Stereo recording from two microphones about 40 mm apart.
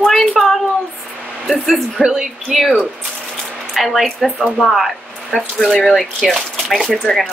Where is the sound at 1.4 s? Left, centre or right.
Centre.